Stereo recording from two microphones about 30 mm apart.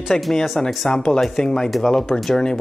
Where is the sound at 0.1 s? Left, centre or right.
Centre.